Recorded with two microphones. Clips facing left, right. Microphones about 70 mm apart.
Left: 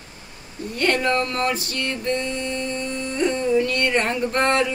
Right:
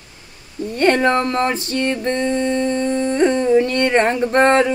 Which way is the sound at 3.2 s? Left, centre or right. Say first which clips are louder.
Right 5 dB; right.